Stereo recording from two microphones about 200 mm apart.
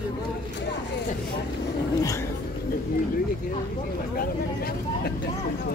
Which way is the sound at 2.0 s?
15° left (ahead or behind).